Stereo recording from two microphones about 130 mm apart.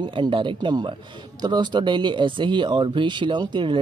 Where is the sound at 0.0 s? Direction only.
40° right (ahead or behind).